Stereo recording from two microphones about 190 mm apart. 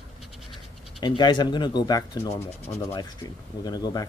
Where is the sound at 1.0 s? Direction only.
25° left (ahead or behind).